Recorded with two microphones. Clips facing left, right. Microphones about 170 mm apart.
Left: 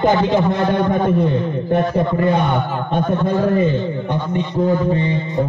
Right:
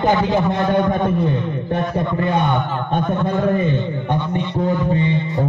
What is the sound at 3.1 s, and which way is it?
Speech, 20° left (ahead or behind).